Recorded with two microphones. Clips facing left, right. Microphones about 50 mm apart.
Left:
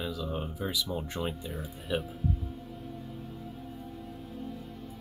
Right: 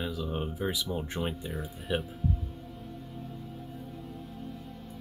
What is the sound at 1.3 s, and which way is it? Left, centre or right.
Speech, centre.